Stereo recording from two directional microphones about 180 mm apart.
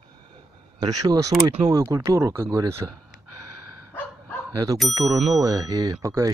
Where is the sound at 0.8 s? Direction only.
20° right (ahead or behind).